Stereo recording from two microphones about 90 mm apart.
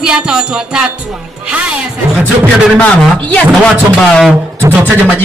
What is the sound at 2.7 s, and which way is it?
Speech, 10° left (ahead or behind).